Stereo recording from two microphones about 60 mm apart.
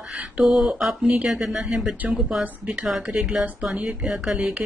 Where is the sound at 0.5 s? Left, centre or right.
Centre.